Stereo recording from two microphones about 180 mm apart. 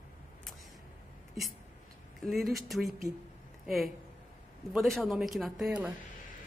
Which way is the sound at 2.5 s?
Centre (ahead or behind).